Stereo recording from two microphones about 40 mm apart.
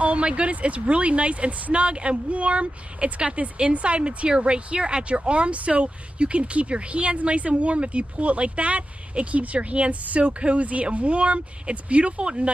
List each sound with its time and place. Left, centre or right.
0.0 s speech: right